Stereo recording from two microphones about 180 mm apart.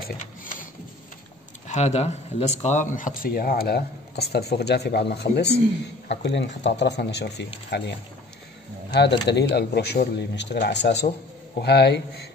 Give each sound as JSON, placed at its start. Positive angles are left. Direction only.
{"t": 1.7, "sound": "speech", "side_deg": 40}
{"t": 8.9, "sound": "speech", "side_deg": 70}